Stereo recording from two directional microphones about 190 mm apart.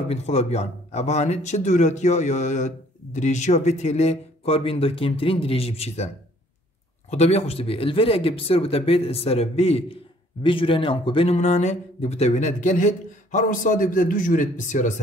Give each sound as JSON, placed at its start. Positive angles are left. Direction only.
{"t": 0.1, "sound": "speech", "side_deg": 35}
{"t": 7.1, "sound": "speech", "side_deg": 35}